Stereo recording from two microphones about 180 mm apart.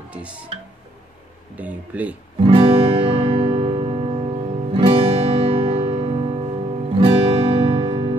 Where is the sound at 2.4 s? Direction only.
30° right (ahead or behind).